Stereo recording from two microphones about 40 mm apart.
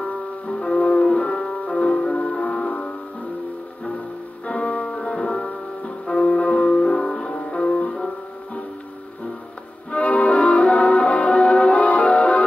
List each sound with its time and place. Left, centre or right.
0.0 s music: left
4.5 s music: left
5.5 s music: left
9.8 s music: left